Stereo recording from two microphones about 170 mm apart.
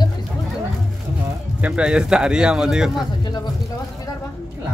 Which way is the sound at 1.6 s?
5° right (ahead or behind).